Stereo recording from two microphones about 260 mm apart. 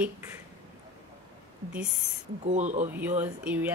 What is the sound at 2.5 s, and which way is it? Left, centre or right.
Speech, right.